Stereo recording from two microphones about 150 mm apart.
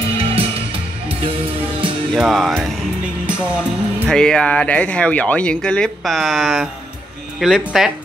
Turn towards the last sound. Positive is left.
turn(degrees=0)  # may be behind; listen again after turning